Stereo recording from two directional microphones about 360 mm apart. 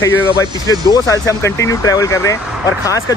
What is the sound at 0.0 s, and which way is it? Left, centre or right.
Speech, centre.